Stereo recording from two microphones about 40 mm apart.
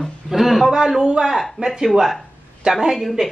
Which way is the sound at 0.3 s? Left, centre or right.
Centre.